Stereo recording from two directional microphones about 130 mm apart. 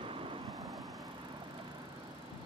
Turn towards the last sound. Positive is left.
turn(degrees=0)  # may be behind; listen again after turning